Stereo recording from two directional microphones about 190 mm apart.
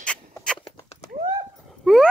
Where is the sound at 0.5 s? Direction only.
35° left (ahead or behind).